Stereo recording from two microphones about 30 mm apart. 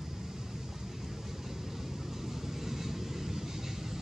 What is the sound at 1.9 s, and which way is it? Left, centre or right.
Vehicle, centre.